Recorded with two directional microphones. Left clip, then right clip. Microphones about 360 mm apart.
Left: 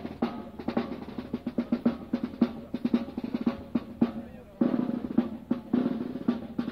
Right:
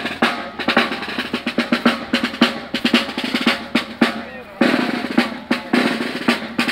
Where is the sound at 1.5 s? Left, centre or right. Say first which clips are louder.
Right 13 dB; right.